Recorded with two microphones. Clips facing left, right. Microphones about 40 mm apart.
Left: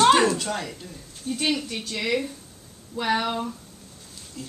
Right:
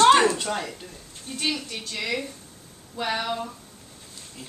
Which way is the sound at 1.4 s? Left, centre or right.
Centre.